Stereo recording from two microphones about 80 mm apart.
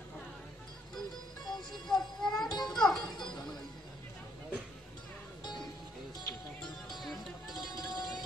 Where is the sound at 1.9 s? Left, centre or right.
Centre.